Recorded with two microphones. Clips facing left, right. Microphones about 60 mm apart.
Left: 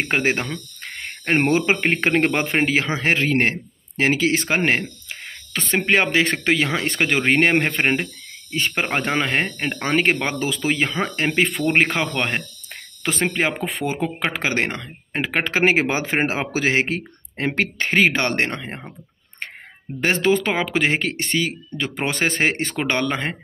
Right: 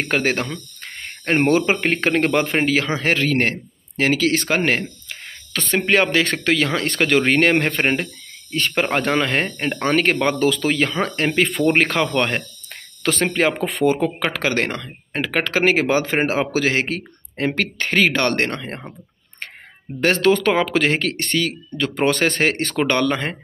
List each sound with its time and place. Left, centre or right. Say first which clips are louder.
0.1 s speech: right 2 dB; left; by 13.9 s centre
13.9 s speech: right 2 dB; centre
20.0 s speech: right 2 dB; centre